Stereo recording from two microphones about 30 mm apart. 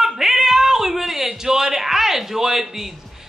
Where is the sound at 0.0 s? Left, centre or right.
Centre.